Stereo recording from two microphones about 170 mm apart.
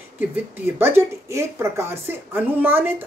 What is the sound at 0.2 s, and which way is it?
Speech, 15° right (ahead or behind).